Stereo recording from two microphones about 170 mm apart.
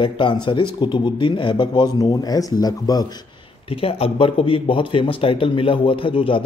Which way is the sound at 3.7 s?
35° left (ahead or behind).